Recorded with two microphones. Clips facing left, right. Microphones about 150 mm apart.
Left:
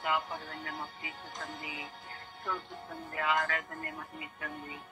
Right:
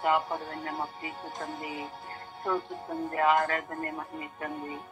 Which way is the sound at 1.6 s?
45° right (ahead or behind).